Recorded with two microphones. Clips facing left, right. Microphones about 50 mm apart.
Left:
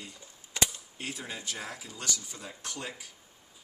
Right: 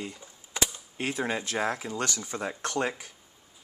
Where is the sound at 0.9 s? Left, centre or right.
Right.